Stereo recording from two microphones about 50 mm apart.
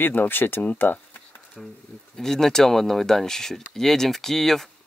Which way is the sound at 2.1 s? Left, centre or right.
Centre.